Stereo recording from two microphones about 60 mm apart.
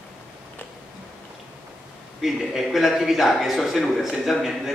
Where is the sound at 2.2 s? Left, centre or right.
Centre.